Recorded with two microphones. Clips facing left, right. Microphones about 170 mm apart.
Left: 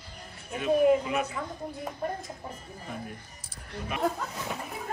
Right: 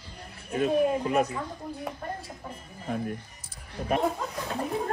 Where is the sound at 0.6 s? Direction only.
45° right (ahead or behind).